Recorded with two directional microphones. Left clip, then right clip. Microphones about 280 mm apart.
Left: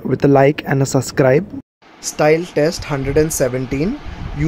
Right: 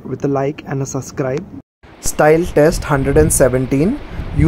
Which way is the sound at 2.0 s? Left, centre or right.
Centre.